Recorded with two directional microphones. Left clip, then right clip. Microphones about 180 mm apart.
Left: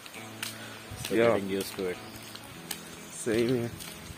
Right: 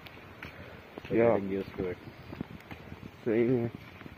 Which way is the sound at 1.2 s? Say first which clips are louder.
Left 1 dB; 15° left (ahead or behind).